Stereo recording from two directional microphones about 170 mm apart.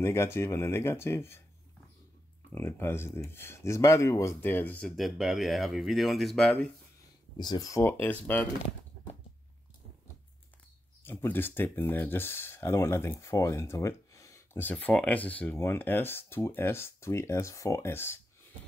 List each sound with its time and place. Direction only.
0.0 s speech: 15° left (ahead or behind)
2.5 s speech: 15° left (ahead or behind)
7.3 s speech: 25° left (ahead or behind); by 8.5 s 10° left (ahead or behind)
11.1 s speech: 10° left (ahead or behind)